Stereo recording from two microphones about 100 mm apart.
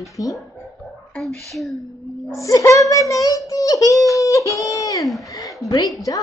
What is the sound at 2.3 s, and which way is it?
A woman's voice, 35° left (ahead or behind).